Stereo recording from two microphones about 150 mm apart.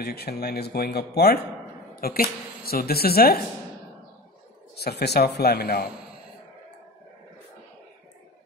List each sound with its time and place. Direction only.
0.0 s a woman's voice: 90° left
4.7 s speech: 90° left